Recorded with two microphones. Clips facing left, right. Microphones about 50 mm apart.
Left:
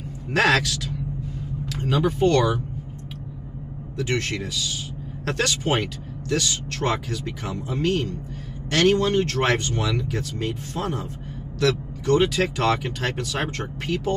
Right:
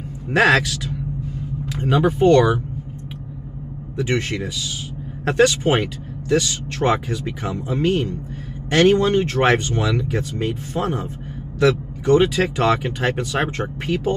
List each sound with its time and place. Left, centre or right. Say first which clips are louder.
0.3 s speech: right 4 dB; centre
3.9 s speech: right 3 dB; centre